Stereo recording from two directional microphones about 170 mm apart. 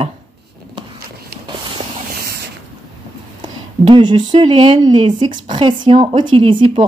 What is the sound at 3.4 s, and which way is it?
A woman's voice, 30° right (ahead or behind).